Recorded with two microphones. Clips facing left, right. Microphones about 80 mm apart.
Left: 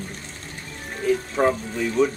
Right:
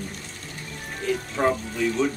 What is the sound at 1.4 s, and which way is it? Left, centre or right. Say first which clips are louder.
Speech: left 2 dB; centre.